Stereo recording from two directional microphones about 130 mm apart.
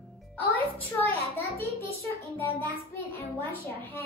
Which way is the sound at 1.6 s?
15° left (ahead or behind).